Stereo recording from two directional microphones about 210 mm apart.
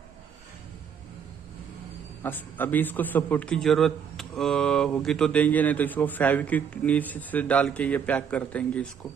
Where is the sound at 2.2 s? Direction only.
10° left (ahead or behind).